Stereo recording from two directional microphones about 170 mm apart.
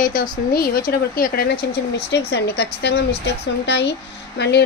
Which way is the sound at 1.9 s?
80° left.